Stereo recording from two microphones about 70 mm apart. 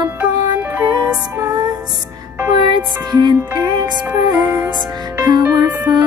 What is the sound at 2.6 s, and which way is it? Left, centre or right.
Music, right.